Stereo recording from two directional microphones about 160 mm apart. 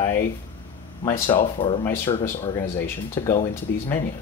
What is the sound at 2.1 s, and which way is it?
Speech, 30° left (ahead or behind).